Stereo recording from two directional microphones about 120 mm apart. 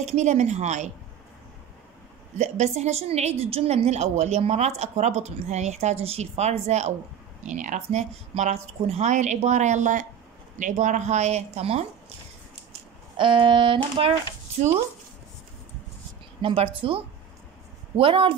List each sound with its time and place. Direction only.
0.0 s a woman's voice: 70° right (ahead or behind)
2.3 s a woman's voice: 70° right (ahead or behind)
7.4 s a woman's voice: 90° right; by 11.8 s 60° right (ahead or behind)
13.2 s a woman's voice: 45° right (ahead or behind)
16.3 s a woman's voice: 50° right (ahead or behind)